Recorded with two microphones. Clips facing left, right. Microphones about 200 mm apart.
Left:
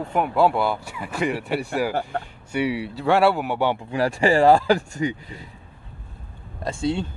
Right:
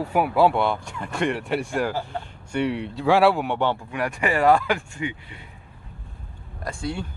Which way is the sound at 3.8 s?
30° left (ahead or behind).